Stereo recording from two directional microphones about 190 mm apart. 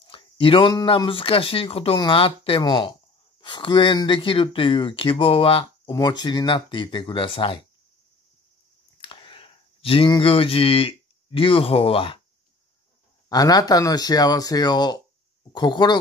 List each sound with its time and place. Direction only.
0.0 s speech: 30° left (ahead or behind)
9.0 s speech: 25° left (ahead or behind)
13.3 s speech: 20° left (ahead or behind)